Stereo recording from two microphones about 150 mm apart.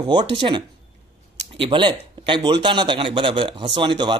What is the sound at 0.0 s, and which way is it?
A man's voice, 30° right (ahead or behind).